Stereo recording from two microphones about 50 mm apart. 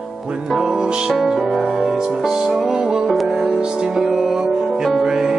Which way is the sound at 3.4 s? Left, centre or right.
Centre.